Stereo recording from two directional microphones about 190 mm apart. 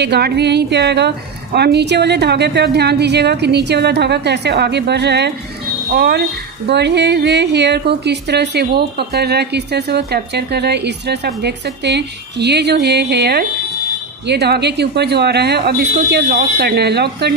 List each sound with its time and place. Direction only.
0.0 s a woman's voice: 60° right (ahead or behind)